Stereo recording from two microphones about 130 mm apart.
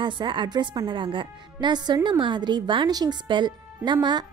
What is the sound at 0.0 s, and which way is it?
A woman's voice, 35° right (ahead or behind).